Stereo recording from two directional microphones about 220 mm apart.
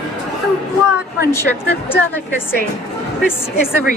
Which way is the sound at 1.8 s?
10° left (ahead or behind).